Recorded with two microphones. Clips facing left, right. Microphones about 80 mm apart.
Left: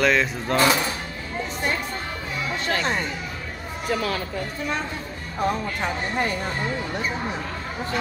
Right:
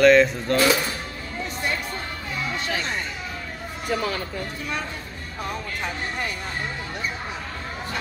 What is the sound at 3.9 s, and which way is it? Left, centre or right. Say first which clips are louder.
Speech: left 1 dB; centre.